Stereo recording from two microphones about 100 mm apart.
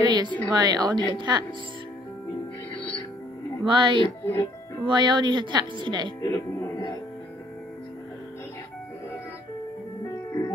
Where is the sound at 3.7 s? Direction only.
55° right (ahead or behind).